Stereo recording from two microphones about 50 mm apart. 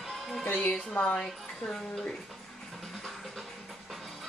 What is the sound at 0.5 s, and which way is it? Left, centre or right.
Speech, left.